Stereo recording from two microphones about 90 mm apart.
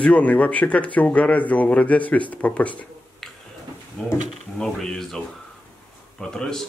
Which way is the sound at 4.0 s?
10° left (ahead or behind).